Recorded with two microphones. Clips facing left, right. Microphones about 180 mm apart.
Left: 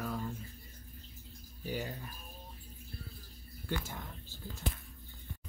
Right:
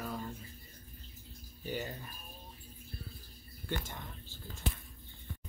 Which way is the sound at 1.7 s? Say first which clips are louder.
Even; 5° left (ahead or behind).